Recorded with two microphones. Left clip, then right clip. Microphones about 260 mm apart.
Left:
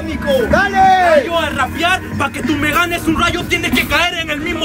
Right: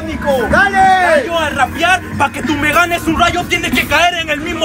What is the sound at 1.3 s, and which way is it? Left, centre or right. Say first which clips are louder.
Speech: right 2 dB; centre.